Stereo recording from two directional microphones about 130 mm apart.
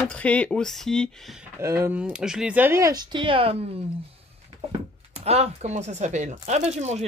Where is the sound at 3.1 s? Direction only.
45° right (ahead or behind).